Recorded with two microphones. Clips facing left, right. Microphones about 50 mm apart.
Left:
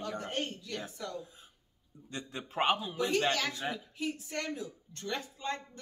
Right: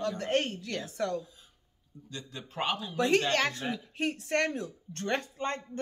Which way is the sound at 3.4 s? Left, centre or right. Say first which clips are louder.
Right 4 dB; right.